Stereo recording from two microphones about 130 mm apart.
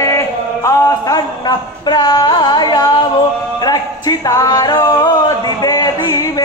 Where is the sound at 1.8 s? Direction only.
35° left (ahead or behind).